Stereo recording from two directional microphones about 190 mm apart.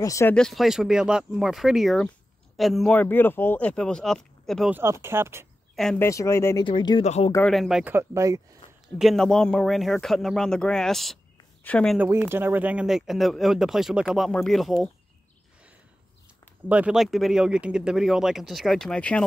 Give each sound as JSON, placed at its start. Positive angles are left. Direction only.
{"t": 0.0, "sound": "speech", "side_deg": 15}
{"t": 4.7, "sound": "speech", "side_deg": -15}
{"t": 5.8, "sound": "speech", "side_deg": 5}
{"t": 6.0, "sound": "speech", "side_deg": 15}
{"t": 6.6, "sound": "speech", "side_deg": 25}
{"t": 7.4, "sound": "speech", "side_deg": 0}
{"t": 8.9, "sound": "speech", "side_deg": 0}
{"t": 12.0, "sound": "speech", "side_deg": -10}
{"t": 16.6, "sound": "speech", "side_deg": -5}